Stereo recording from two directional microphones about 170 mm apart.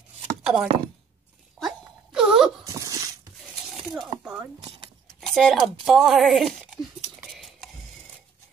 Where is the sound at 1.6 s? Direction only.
Centre (ahead or behind).